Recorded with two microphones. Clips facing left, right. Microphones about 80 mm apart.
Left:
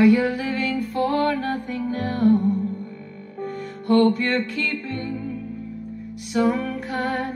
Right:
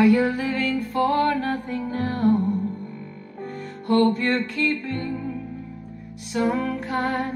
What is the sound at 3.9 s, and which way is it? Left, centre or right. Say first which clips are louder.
Music: left 1 dB; right.